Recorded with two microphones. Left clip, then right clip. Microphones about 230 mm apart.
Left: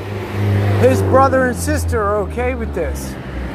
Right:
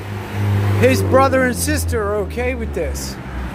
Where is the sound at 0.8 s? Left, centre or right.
Centre.